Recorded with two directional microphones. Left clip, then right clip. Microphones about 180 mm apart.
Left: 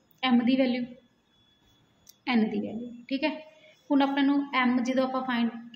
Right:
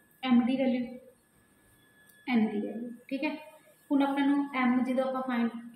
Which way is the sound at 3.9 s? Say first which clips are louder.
Left 3 dB; 65° left (ahead or behind).